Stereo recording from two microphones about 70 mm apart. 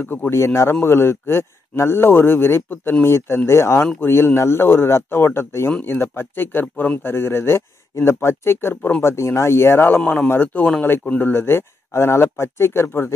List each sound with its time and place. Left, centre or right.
0.0 s speech: left
0.4 s speech: left
5.7 s speech: left
5.9 s speech: left